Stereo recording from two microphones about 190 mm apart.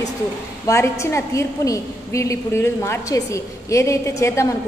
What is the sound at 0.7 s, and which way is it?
A woman's voice, 15° left (ahead or behind).